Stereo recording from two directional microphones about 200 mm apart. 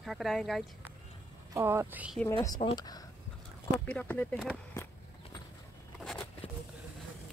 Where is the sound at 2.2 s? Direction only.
15° left (ahead or behind).